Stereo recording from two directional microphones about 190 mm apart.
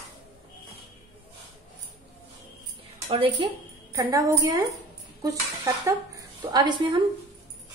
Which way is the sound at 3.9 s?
15° right (ahead or behind).